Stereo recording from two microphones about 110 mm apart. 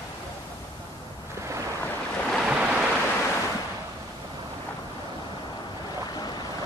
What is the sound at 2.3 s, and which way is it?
Waves, 5° right (ahead or behind).